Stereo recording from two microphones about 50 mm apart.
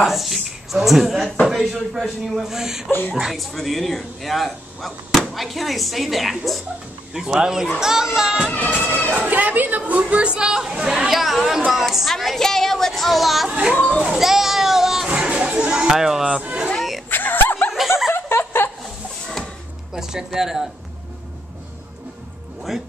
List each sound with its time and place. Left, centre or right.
0.0 s speech: centre
7.2 s speech: centre
9.3 s speech: right; by 11.1 s centre
11.1 s speech: centre
13.5 s speech: centre
13.8 s children playing: centre
15.0 s a sound: right
15.9 s speech: centre
16.6 s chatter: centre
17.1 s snicker: left
17.7 s a sound: centre
18.1 s a sound: left
19.9 s speech: centre
22.7 s speech: centre